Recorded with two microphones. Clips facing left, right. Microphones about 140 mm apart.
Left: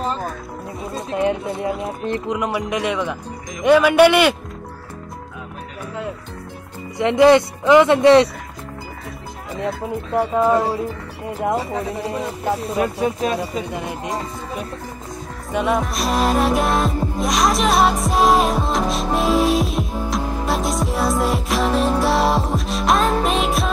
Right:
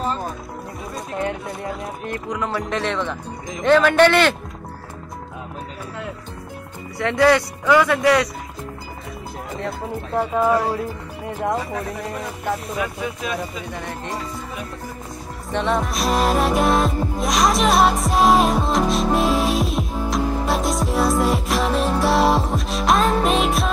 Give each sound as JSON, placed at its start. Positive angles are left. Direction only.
{"t": 0.9, "sound": "speech", "side_deg": 20}
{"t": 7.0, "sound": "speech", "side_deg": 20}
{"t": 10.3, "sound": "speech", "side_deg": 15}
{"t": 11.9, "sound": "speech", "side_deg": 30}
{"t": 15.5, "sound": "music", "side_deg": 5}